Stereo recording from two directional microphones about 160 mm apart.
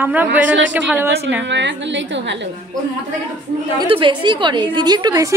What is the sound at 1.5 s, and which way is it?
A woman's voice, 90° right.